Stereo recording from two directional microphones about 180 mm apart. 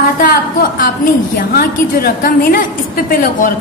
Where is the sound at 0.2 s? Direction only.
55° left (ahead or behind).